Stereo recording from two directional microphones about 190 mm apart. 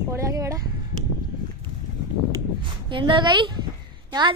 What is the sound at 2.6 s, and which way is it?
A woman's voice, 25° right (ahead or behind).